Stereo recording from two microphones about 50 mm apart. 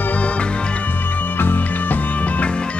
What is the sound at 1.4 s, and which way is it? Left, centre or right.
Music, left.